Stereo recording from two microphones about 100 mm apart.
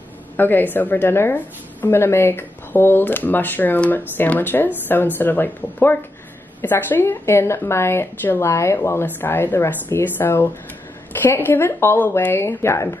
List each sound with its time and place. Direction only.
0.4 s a woman's voice: 20° left (ahead or behind)